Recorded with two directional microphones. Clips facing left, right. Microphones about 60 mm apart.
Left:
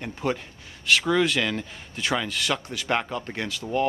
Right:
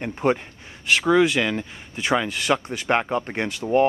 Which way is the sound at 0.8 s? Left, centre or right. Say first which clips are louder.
Right 4 dB; centre.